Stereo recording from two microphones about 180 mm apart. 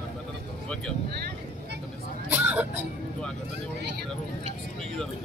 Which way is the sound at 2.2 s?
10° right (ahead or behind).